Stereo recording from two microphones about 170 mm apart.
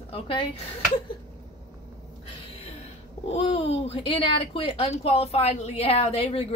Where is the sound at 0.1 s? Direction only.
35° left (ahead or behind).